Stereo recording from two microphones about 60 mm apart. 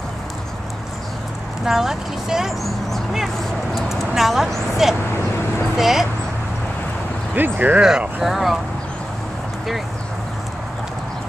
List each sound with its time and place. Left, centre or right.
1.7 s speech: centre
3.7 s speech: centre
7.3 s speech: right
8.2 s speech: centre